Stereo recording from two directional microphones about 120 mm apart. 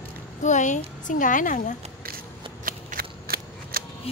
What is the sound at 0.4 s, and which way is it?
A woman's voice, 90° left.